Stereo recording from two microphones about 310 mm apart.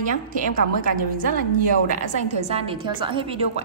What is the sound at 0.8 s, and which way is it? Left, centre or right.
A woman's voice, right.